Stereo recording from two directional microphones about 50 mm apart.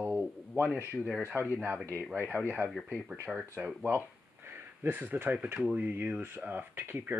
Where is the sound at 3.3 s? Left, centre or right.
Centre.